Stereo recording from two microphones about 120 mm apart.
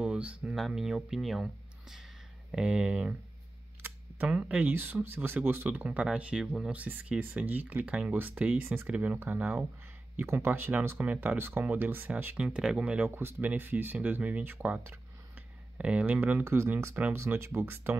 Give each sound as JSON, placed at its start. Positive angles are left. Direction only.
{"t": 0.0, "sound": "speech", "side_deg": -10}